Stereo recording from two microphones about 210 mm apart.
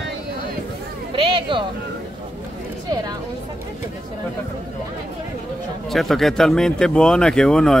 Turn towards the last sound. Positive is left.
turn(degrees=5)  # may be behind; listen again after turning